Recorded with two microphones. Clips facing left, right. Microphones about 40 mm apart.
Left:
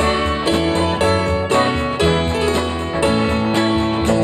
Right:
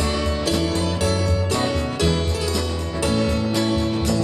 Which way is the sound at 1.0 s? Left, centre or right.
Left.